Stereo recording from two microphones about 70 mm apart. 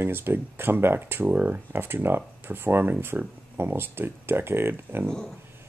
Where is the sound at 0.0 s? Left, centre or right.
Right.